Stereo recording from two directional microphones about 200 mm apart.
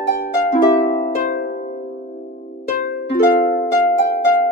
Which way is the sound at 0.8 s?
35° left (ahead or behind).